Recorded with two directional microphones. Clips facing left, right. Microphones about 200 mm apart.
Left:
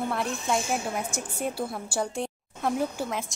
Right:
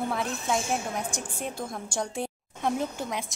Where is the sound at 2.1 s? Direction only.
5° right (ahead or behind).